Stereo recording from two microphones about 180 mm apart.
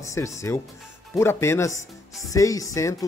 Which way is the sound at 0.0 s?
15° left (ahead or behind).